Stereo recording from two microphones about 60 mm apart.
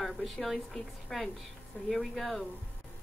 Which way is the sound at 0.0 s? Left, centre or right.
Centre.